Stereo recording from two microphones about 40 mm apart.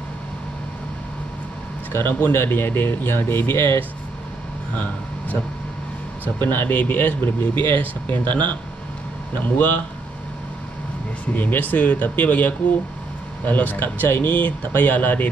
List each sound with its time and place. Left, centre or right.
1.9 s speech: left
2.3 s speech: left
6.2 s speech: left
6.8 s speech: left
9.3 s speech: left
11.3 s speech: left
14.3 s speech: left